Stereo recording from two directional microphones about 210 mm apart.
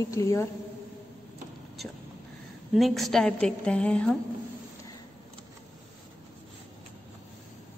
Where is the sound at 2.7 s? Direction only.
Centre (ahead or behind).